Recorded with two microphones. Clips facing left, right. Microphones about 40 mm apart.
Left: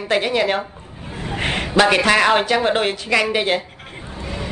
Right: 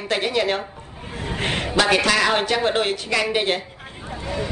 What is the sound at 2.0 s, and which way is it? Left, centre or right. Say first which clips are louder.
Speech: left 4 dB; left.